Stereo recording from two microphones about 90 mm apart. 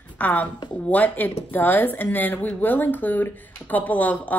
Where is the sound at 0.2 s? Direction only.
15° left (ahead or behind).